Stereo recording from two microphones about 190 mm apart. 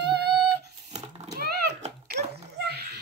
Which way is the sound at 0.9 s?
35° right (ahead or behind).